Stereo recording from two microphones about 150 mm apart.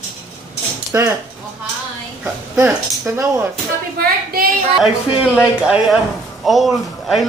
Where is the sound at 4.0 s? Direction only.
75° right (ahead or behind).